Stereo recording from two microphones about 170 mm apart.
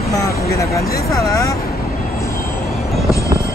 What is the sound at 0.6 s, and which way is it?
Speech, 20° left (ahead or behind).